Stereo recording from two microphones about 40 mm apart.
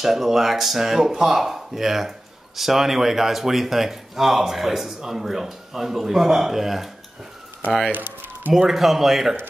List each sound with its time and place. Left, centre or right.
0.0 s speech: centre
7.9 s a sound: right
8.5 s speech: centre